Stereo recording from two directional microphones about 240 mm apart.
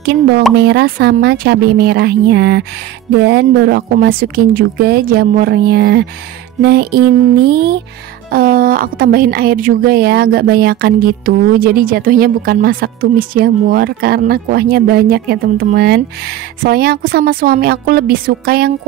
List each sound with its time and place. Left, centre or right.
0.6 s a woman's voice: right
7.4 s music: right
8.3 s a woman's voice: right